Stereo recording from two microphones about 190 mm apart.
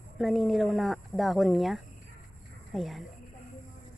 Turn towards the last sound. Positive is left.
turn(degrees=0)  # may be behind; listen again after turning